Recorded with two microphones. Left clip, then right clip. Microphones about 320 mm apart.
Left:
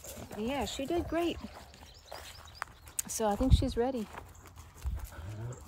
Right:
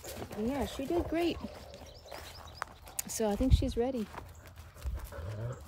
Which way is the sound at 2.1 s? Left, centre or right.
Centre.